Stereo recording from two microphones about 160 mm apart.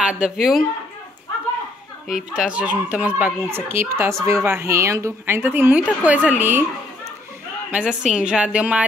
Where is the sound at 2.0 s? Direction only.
5° right (ahead or behind).